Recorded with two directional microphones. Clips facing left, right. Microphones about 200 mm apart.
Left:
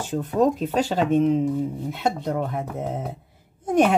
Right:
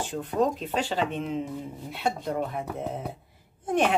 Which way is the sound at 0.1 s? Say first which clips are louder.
Left 6 dB; 45° left (ahead or behind).